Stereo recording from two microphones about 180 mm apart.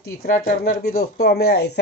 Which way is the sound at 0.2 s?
55° left (ahead or behind).